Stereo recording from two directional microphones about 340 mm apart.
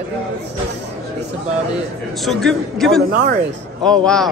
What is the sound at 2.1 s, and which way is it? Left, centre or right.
A man's voice, centre.